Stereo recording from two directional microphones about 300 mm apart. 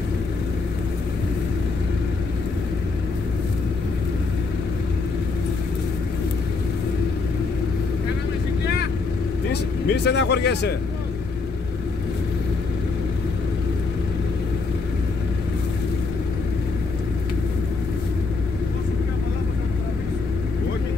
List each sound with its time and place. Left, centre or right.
9.5 s speech: left